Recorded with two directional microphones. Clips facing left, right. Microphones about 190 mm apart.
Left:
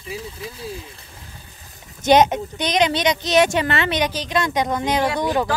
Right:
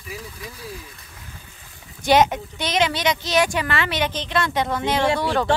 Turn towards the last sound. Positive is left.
turn(degrees=10)  # may be behind; listen again after turning